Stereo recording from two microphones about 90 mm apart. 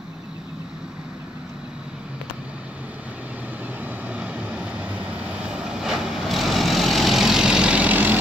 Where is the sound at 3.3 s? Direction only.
15° right (ahead or behind).